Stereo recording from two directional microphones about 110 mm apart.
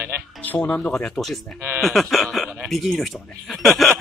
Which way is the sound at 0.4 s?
10° left (ahead or behind).